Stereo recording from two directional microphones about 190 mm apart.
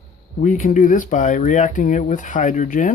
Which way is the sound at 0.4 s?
45° left (ahead or behind).